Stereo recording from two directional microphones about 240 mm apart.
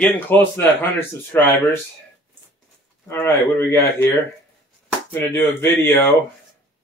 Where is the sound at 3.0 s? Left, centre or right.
Centre.